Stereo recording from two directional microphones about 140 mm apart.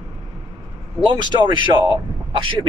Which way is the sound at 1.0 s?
35° right (ahead or behind).